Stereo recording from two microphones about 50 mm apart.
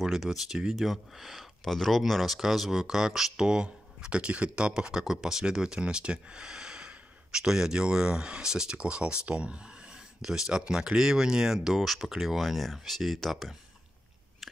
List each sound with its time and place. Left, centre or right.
0.0 s speech: centre; by 9.6 s right
10.2 s speech: centre